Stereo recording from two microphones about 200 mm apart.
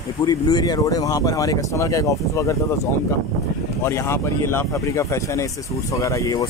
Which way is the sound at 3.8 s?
15° left (ahead or behind).